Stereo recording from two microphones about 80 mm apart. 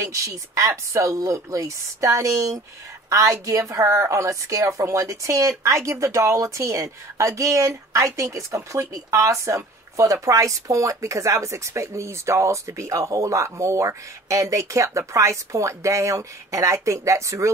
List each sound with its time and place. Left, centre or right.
0.0 s speech: right